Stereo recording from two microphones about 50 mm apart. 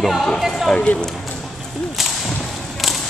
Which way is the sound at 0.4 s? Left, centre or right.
Centre.